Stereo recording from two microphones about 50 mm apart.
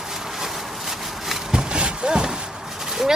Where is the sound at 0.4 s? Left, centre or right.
Centre.